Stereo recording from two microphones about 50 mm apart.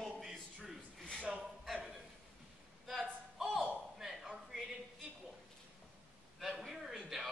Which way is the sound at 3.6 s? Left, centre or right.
Centre.